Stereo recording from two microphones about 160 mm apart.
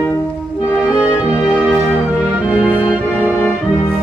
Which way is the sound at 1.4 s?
5° right (ahead or behind).